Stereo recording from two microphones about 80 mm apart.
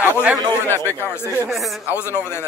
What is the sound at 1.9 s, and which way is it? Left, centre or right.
Speech, left.